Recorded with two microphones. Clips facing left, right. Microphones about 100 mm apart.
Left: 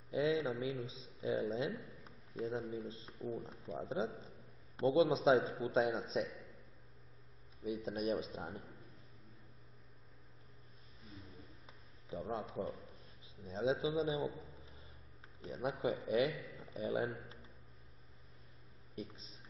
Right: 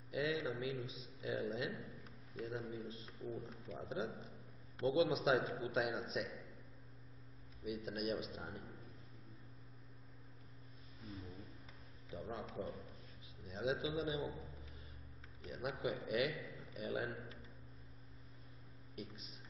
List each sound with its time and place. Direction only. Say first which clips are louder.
0.1 s a man's voice: left 5 dB; 30° left (ahead or behind)
2.0 s a sound: left 7 dB; 30° left (ahead or behind)
3.4 s a man's voice: left 4 dB; 30° left (ahead or behind)
7.6 s a man's voice: left 4 dB; 30° left (ahead or behind)
12.1 s a man's voice: left 5 dB; 30° left (ahead or behind)
14.3 s a man's voice: even; centre (ahead or behind)
15.4 s a man's voice: left 4 dB; 30° left (ahead or behind)
18.9 s a man's voice: left 3 dB; 30° left (ahead or behind)